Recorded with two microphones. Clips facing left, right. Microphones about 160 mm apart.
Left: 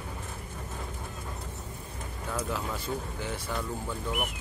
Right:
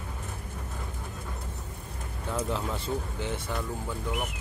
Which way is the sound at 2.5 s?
25° right (ahead or behind).